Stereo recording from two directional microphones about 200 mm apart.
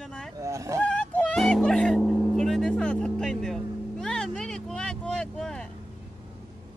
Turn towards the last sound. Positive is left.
turn(degrees=5)  # may be behind; listen again after turning